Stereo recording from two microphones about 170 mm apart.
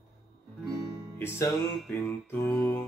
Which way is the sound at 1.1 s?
15° left (ahead or behind).